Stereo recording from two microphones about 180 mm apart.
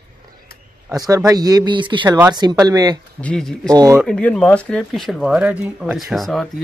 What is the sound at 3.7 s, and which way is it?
Speech, 20° right (ahead or behind).